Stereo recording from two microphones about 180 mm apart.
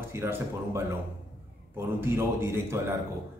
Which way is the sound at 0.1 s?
15° right (ahead or behind).